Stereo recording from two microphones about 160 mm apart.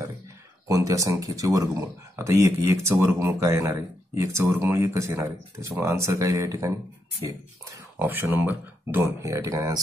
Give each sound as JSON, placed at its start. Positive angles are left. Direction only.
{"t": 0.7, "sound": "speech", "side_deg": -20}
{"t": 8.0, "sound": "speech", "side_deg": -10}